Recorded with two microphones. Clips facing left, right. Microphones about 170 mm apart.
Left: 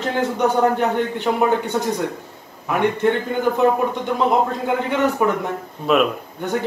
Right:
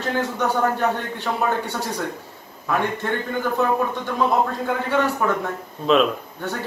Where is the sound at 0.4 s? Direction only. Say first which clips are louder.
Left 5 dB; 20° left (ahead or behind).